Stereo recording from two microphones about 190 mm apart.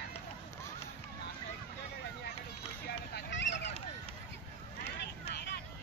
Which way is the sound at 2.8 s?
65° left (ahead or behind).